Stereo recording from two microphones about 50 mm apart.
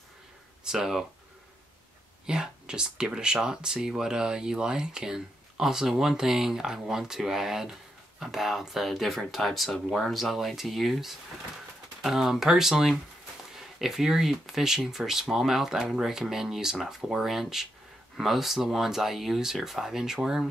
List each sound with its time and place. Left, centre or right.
0.7 s speech: centre
2.2 s speech: centre